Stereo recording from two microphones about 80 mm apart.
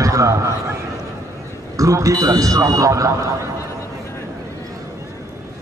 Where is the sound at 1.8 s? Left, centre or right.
Right.